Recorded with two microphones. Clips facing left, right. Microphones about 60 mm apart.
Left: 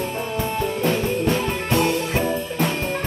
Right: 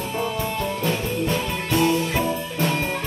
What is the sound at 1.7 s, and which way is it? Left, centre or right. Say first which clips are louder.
Music: right 1 dB; left.